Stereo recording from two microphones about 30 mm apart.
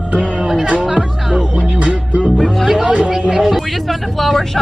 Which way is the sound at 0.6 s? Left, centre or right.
Right.